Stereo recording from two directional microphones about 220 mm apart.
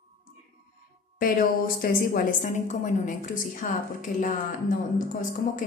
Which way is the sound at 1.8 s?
40° left (ahead or behind).